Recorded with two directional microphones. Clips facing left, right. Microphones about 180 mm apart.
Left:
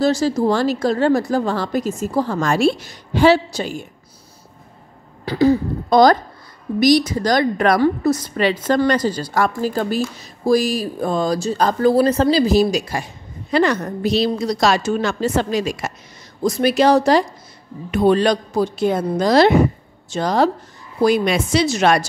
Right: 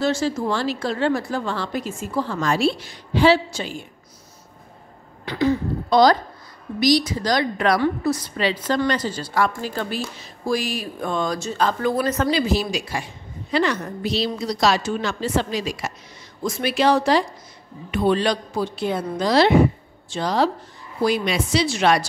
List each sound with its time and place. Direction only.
0.0 s a woman's voice: 40° left (ahead or behind)
5.2 s a woman's voice: 35° left (ahead or behind)